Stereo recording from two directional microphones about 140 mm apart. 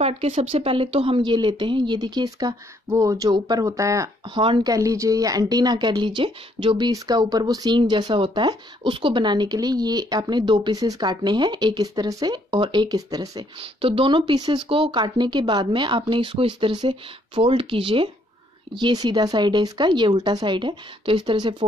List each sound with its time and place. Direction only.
0.0 s speech: 45° right (ahead or behind); by 13.5 s 25° right (ahead or behind)
13.6 s speech: 40° right (ahead or behind)